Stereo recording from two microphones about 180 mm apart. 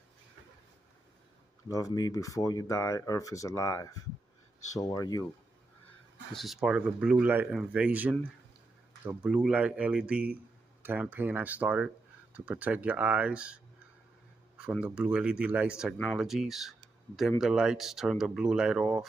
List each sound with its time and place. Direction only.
1.7 s speech: 20° left (ahead or behind)
6.3 s speech: centre (ahead or behind)
14.6 s speech: 5° right (ahead or behind)